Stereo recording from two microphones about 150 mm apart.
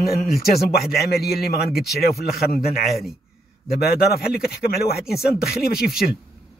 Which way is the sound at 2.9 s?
Centre (ahead or behind).